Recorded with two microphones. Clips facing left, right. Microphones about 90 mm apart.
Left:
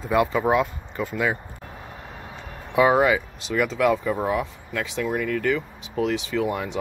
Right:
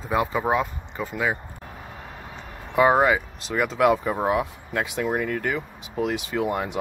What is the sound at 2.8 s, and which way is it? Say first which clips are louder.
Speech: even; centre (ahead or behind).